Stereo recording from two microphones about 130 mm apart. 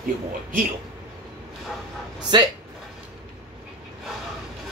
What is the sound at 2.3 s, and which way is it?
Speech, 35° right (ahead or behind).